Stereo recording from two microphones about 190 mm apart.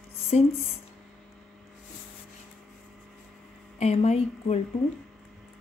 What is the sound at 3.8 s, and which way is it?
Speech, 35° left (ahead or behind).